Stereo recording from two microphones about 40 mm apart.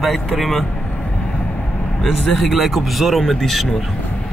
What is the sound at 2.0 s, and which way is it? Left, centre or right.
Speech, centre.